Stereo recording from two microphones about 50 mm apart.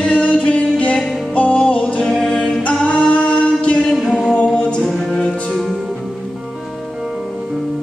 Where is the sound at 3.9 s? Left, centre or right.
Centre.